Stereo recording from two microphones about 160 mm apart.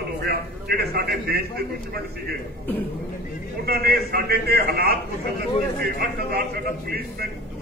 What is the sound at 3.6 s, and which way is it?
A man's voice, 75° right (ahead or behind).